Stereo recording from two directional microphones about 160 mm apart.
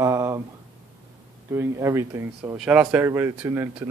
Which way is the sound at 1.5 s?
15° right (ahead or behind).